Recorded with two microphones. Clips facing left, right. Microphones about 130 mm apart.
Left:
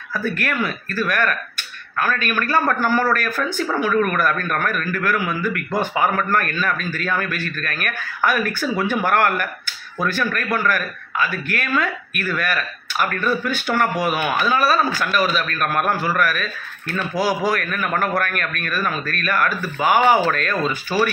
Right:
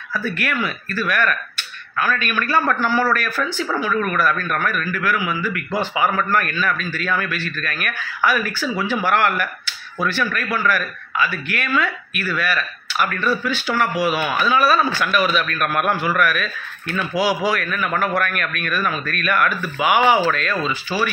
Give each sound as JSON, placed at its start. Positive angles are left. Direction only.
{"t": 0.1, "sound": "a man's voice", "side_deg": 45}